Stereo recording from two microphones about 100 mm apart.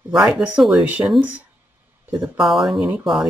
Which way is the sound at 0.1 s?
10° right (ahead or behind).